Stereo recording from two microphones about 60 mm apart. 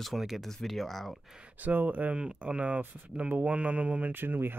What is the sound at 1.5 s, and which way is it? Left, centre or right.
Speech, right.